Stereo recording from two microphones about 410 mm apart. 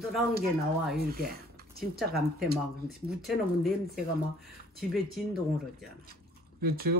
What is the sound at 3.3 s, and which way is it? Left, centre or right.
Speech, centre.